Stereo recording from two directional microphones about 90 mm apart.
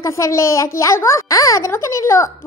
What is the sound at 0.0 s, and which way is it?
A child's voice, 35° left (ahead or behind).